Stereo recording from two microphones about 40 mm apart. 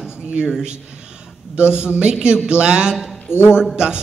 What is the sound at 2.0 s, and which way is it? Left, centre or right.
Speech, right.